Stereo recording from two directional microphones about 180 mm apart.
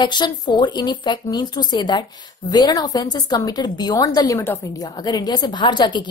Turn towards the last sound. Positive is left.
turn(degrees=25)  # may be behind; listen again after turning